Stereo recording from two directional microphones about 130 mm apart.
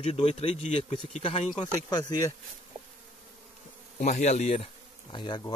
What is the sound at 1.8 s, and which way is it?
Speech, 30° left (ahead or behind).